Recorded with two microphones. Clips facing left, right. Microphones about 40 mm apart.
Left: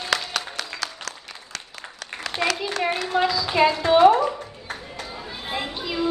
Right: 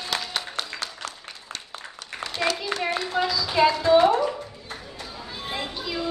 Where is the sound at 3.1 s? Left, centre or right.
Left.